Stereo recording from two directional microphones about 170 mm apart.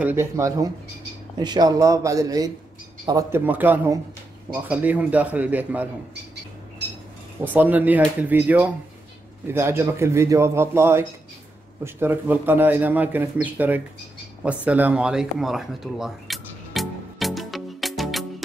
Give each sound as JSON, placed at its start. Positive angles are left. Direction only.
{"t": 0.0, "sound": "a man's voice", "side_deg": -15}
{"t": 7.5, "sound": "a man's voice", "side_deg": -10}
{"t": 14.4, "sound": "a sound", "side_deg": -10}